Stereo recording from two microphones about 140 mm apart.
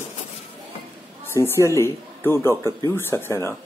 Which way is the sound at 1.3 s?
20° left (ahead or behind).